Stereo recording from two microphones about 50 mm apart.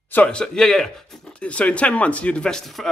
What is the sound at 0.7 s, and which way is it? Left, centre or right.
Speech, centre.